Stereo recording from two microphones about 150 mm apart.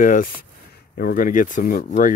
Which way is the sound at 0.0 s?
65° left (ahead or behind).